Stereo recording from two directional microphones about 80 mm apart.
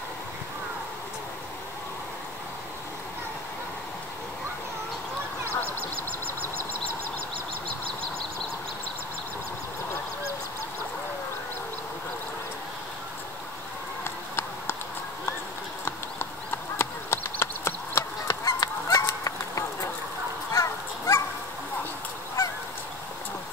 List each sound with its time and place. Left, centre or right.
5.5 s duck: centre
16.7 s clip-clop: left
18.2 s goose: left
20.5 s dog: left